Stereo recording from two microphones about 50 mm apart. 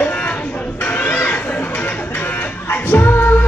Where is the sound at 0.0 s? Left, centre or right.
Left.